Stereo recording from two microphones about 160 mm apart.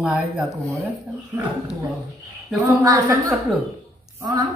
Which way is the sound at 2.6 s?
20° right (ahead or behind).